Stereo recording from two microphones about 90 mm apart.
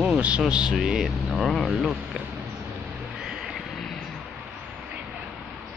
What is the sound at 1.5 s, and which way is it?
Speech, 5° left (ahead or behind).